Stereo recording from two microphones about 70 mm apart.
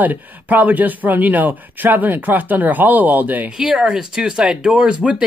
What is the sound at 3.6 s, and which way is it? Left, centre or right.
Speech, centre.